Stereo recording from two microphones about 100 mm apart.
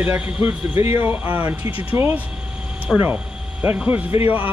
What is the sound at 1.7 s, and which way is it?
Speech, 65° left (ahead or behind).